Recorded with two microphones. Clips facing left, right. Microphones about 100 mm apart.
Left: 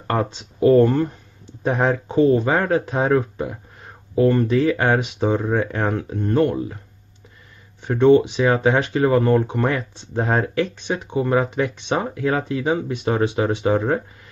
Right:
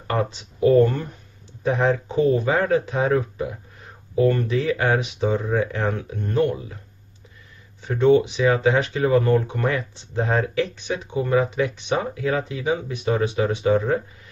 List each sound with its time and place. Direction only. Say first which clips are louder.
0.0 s speech: left 2 dB; 40° left (ahead or behind); by 2.4 s 25° left (ahead or behind)
2.4 s speech: left 1 dB; 40° left (ahead or behind)
4.5 s speech: left 3 dB; 45° left (ahead or behind)
5.9 s speech: left 4 dB; 30° left (ahead or behind)
7.9 s speech: left 3 dB; 30° left (ahead or behind)
10.9 s speech: left 3 dB; 25° left (ahead or behind)
13.6 s speech: right 2 dB; 25° left (ahead or behind)